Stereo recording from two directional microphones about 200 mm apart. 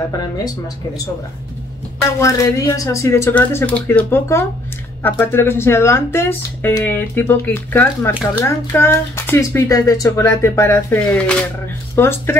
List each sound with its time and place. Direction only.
2.0 s speech: 15° left (ahead or behind)